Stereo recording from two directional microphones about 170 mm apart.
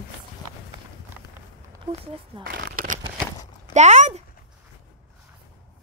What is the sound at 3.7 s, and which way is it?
Speech, 45° right (ahead or behind).